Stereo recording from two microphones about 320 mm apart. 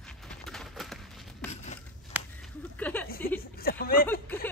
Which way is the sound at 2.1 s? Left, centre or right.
Centre.